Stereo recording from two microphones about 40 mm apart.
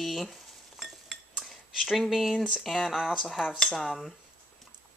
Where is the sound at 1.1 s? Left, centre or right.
Centre.